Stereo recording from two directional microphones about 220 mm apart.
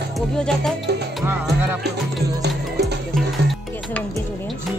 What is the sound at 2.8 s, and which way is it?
Music, centre (ahead or behind).